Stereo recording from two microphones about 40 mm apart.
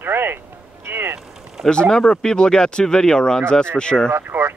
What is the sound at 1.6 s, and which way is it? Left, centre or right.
Speech, centre.